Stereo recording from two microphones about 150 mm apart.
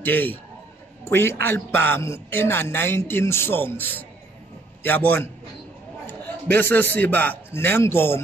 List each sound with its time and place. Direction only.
0.0 s a man's voice: 10° left (ahead or behind)